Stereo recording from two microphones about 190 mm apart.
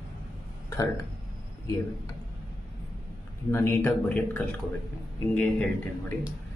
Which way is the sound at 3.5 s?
10° left (ahead or behind).